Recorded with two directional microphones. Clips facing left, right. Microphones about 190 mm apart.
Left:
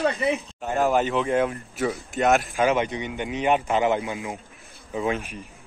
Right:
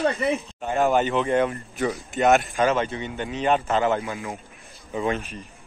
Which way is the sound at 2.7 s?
15° left (ahead or behind).